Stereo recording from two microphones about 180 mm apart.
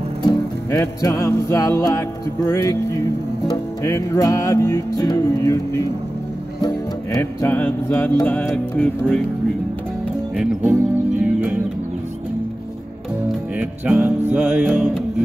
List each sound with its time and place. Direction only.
0.7 s music: 15° left (ahead or behind)
10.3 s music: 5° right (ahead or behind)
13.6 s music: 5° right (ahead or behind)